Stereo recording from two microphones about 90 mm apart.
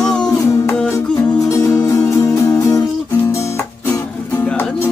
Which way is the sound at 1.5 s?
35° left (ahead or behind).